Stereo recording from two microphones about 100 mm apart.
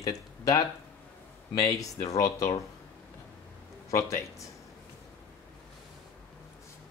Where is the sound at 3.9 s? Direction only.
30° left (ahead or behind).